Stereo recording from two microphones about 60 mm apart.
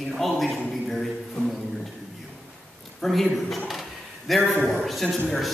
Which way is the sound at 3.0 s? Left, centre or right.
Centre.